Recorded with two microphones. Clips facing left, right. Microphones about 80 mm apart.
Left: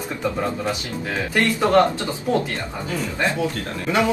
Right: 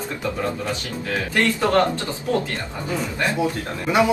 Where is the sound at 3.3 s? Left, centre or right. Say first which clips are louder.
Right 1 dB; centre.